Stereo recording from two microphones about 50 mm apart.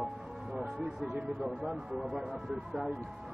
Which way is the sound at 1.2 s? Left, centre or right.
Right.